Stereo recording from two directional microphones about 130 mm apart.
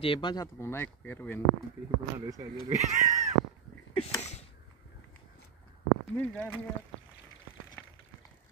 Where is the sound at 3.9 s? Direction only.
55° left (ahead or behind).